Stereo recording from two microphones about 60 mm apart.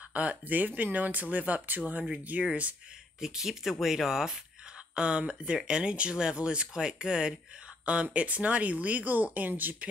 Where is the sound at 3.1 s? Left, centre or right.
Centre.